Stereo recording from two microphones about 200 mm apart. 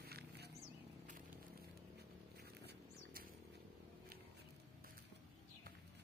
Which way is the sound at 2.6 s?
55° right (ahead or behind).